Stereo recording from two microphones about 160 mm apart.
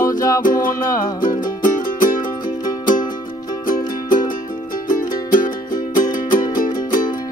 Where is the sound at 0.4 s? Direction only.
60° left (ahead or behind).